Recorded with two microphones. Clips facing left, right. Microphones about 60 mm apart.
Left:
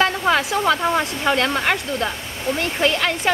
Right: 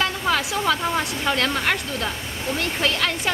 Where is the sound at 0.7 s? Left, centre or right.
Left.